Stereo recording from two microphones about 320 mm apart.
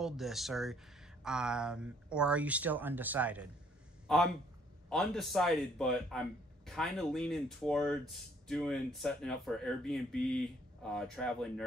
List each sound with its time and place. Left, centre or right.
0.0 s a man's voice: centre